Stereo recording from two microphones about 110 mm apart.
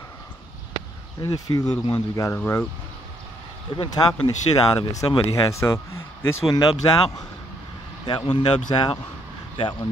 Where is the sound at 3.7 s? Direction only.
40° left (ahead or behind).